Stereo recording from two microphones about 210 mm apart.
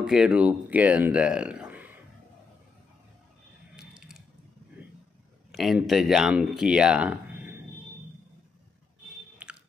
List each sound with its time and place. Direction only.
0.0 s speech: 5° right (ahead or behind)
3.7 s a sound: 5° right (ahead or behind)
4.8 s vehicle: 5° right (ahead or behind)
5.5 s speech: centre (ahead or behind)
9.4 s chewing: 5° right (ahead or behind)